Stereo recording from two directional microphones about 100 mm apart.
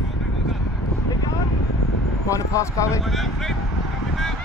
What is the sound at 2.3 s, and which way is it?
Speech, 30° left (ahead or behind).